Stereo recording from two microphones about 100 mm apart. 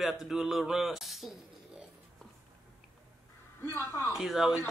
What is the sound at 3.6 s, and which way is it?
Speech, 25° left (ahead or behind).